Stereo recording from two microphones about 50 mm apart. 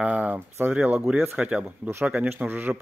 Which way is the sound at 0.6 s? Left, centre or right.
Right.